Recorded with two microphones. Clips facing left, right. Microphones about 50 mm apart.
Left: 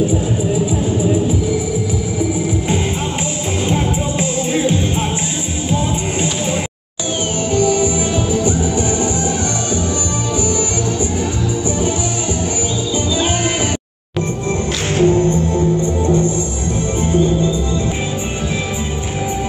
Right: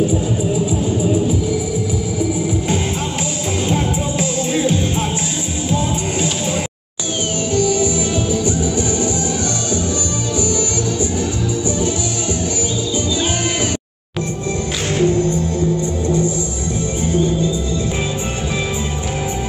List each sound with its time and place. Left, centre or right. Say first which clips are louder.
7.5 s music: left 2 dB; left
15.0 s music: left 4 dB; left